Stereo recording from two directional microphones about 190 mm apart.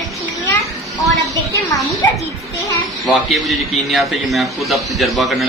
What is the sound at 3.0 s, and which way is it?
A man's voice, centre (ahead or behind).